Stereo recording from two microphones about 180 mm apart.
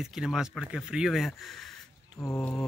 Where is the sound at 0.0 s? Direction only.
Centre (ahead or behind).